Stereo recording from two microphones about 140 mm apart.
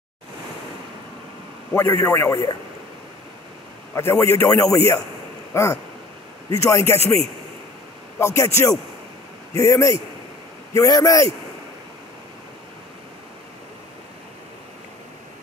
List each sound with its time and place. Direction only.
1.7 s a man's voice: 15° left (ahead or behind)
3.9 s a man's voice: 20° left (ahead or behind)
5.5 s a sound: 20° left (ahead or behind)
6.5 s a man's voice: 20° left (ahead or behind)
8.2 s a man's voice: 20° left (ahead or behind)